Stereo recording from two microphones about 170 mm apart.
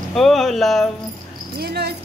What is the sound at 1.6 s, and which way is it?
Speech, 70° right (ahead or behind).